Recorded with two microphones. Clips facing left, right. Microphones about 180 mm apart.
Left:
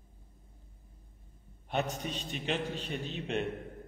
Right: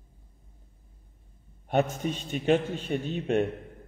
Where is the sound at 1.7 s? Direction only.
45° right (ahead or behind).